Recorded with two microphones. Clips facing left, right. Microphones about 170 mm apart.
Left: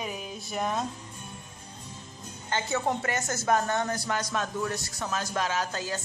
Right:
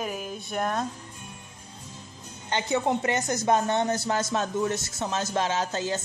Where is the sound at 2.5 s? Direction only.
20° right (ahead or behind).